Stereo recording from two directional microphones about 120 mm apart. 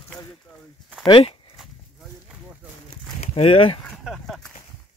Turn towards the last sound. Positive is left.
turn(degrees=0)  # may be behind; listen again after turning